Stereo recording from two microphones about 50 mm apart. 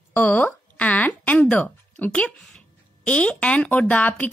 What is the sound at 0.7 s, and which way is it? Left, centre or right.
Speech, left.